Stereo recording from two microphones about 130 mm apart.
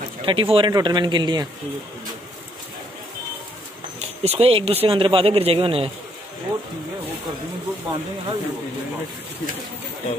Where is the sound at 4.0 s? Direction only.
50° right (ahead or behind).